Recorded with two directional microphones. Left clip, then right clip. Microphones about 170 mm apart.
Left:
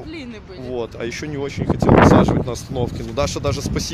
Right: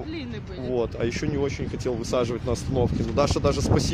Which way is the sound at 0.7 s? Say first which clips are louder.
Even; centre (ahead or behind).